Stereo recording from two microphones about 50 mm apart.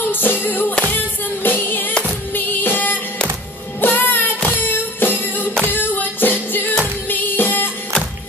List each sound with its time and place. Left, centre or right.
0.1 s music: left
5.7 s singing: left
6.8 s music: left